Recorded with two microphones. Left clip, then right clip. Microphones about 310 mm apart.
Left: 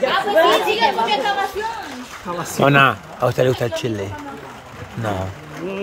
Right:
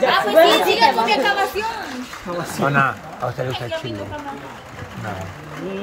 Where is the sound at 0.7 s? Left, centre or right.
Right.